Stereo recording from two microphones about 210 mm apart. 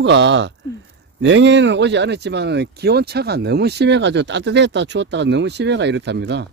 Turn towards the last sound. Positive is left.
turn(degrees=-55)  # may be behind; listen again after turning